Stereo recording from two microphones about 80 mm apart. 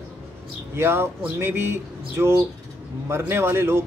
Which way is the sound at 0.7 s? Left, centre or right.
Right.